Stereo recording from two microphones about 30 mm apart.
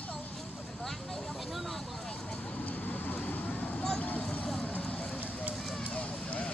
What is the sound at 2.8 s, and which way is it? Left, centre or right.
Vehicle, left.